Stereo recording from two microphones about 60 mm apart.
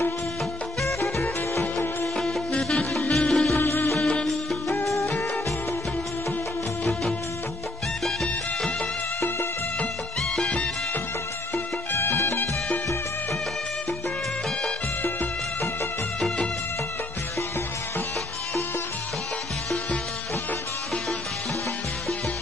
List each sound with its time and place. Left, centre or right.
1.5 s music: left
2.1 s music: centre
3.5 s music: left
4.0 s music: centre
8.0 s music: centre
10.3 s music: centre
11.5 s music: left